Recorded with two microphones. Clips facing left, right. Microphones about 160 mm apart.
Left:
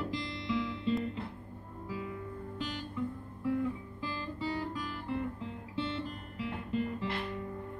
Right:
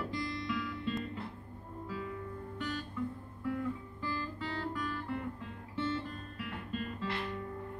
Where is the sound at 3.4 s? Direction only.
20° left (ahead or behind).